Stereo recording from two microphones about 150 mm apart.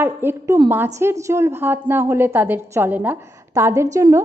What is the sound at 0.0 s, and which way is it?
A woman's voice, 15° right (ahead or behind).